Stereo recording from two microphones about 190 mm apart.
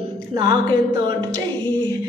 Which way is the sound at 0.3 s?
20° right (ahead or behind).